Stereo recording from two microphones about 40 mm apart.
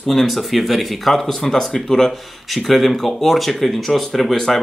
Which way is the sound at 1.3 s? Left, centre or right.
Centre.